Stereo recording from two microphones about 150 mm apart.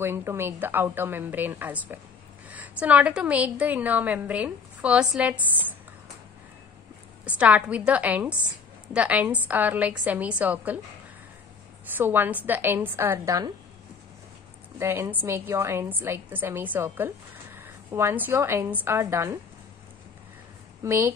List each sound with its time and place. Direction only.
0.0 s a woman's voice: 15° right (ahead or behind)
7.2 s a woman's voice: 10° right (ahead or behind)
12.0 s a woman's voice: 15° right (ahead or behind)
14.8 s a woman's voice: 15° right (ahead or behind)
20.8 s a woman's voice: 15° right (ahead or behind)